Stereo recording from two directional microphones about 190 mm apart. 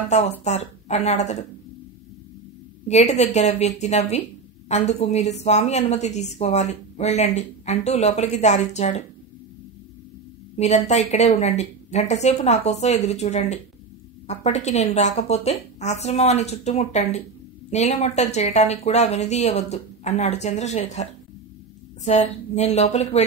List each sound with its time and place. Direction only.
0.4 s a woman's voice: 35° left (ahead or behind)
2.9 s a woman's voice: 35° left (ahead or behind)
10.5 s a woman's voice: 35° left (ahead or behind)